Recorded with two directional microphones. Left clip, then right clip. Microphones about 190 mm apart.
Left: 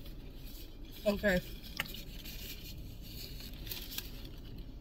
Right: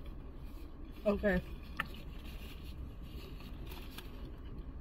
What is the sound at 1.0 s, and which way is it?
Speech, 50° left (ahead or behind).